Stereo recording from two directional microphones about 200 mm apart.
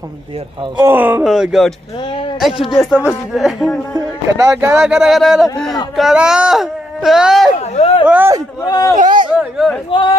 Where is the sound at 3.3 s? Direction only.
Centre (ahead or behind).